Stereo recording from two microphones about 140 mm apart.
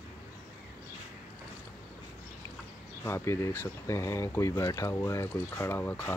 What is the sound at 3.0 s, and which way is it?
Speech, 20° left (ahead or behind).